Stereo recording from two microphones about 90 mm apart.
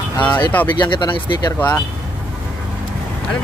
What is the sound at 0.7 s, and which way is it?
Speech, 55° left (ahead or behind).